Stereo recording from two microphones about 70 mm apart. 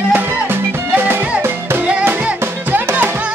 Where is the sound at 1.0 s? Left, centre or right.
Right.